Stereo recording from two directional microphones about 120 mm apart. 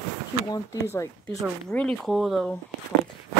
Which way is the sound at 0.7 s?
20° left (ahead or behind).